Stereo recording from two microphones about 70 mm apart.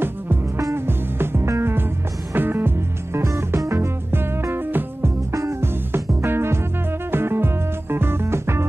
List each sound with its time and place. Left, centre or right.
0.7 s music: right
3.2 s music: right
5.3 s music: right